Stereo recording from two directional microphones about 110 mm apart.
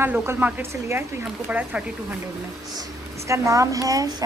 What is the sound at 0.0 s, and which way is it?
Speech, 20° right (ahead or behind).